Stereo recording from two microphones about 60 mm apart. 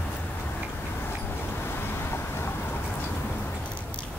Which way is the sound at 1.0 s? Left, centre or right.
Left.